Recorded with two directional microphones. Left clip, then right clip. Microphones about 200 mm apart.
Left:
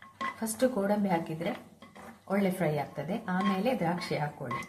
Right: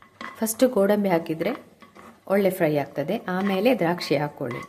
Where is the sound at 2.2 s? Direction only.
50° right (ahead or behind).